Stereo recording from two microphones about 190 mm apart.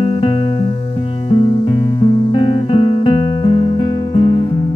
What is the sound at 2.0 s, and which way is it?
Guitar, 25° left (ahead or behind).